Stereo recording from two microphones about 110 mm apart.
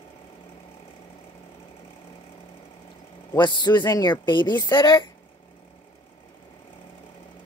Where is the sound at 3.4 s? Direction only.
45° left (ahead or behind).